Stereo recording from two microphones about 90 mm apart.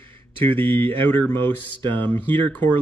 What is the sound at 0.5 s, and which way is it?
Speech, 20° left (ahead or behind).